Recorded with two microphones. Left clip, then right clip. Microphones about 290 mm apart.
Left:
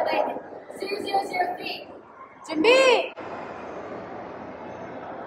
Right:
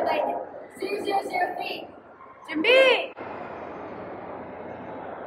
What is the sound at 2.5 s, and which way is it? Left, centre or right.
Speech, centre.